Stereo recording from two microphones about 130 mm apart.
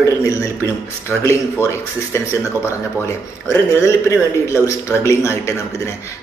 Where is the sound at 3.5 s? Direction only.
20° left (ahead or behind).